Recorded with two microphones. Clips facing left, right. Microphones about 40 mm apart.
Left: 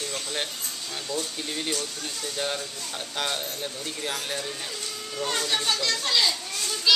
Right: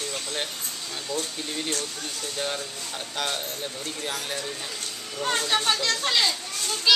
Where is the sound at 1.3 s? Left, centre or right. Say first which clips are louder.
Even; centre.